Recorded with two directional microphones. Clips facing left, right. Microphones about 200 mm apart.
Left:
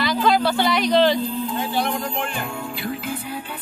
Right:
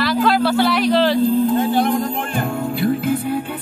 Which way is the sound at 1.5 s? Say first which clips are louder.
Right 7 dB; 50° right (ahead or behind).